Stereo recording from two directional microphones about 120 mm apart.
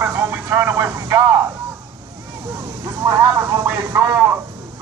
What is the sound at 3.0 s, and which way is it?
Speech, 25° right (ahead or behind).